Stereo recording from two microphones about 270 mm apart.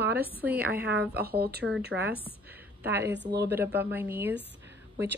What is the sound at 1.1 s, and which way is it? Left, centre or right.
Speech, right.